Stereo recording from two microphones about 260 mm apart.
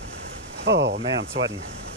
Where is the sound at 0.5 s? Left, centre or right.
Right.